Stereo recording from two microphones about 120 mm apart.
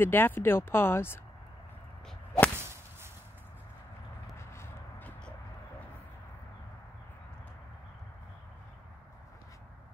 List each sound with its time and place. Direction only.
0.0 s speech: 15° left (ahead or behind)
2.5 s whip: 20° right (ahead or behind)
4.5 s a sound: 20° left (ahead or behind)